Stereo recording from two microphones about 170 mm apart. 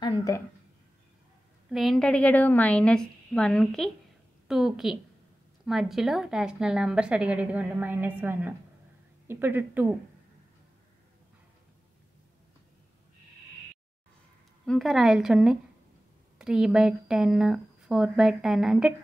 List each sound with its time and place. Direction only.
0.3 s speech: 20° left (ahead or behind)
1.7 s a woman's voice: centre (ahead or behind)
14.7 s speech: centre (ahead or behind)